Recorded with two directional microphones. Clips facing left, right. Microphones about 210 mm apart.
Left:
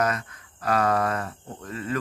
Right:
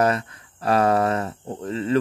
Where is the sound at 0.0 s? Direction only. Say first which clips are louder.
Right 5 dB; 30° right (ahead or behind).